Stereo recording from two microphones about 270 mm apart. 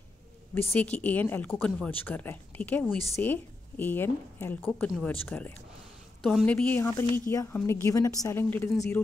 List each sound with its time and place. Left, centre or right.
0.7 s a woman's voice: centre